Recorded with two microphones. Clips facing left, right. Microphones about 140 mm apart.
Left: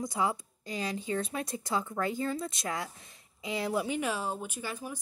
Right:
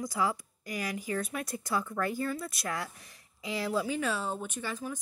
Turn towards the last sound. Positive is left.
turn(degrees=10)  # may be behind; listen again after turning